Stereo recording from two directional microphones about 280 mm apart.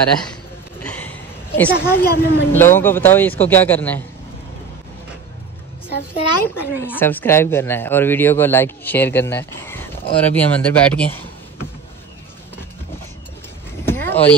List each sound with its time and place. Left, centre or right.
0.8 s a sound: centre
1.7 s a woman's voice: left
2.5 s a woman's voice: centre
6.4 s a woman's voice: centre
13.8 s vehicle: centre